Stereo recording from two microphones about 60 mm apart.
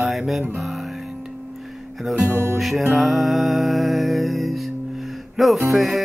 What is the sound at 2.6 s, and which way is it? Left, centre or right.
Speech, centre.